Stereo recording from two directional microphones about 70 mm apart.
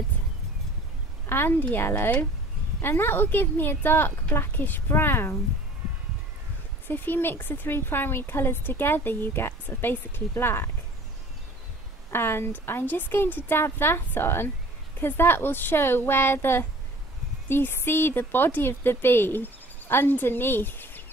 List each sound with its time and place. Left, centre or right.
1.2 s speech: left
6.9 s speech: left
12.1 s speech: left